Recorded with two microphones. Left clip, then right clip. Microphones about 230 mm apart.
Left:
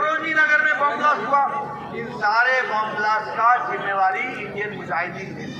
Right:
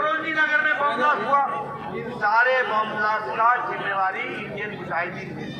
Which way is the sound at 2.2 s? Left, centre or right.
Left.